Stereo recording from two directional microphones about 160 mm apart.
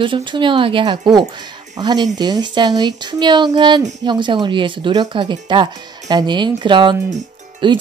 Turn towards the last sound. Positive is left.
turn(degrees=-30)  # may be behind; listen again after turning